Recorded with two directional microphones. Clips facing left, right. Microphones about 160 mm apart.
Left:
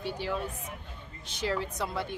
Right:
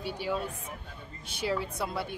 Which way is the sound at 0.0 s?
10° right (ahead or behind).